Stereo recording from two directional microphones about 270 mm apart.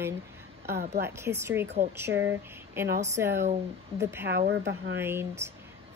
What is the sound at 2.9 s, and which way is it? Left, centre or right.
Speech, right.